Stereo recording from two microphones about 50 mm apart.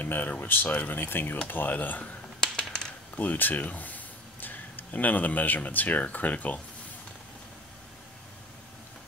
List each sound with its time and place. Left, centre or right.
0.0 s speech: left
2.4 s a sound: centre
3.2 s speech: left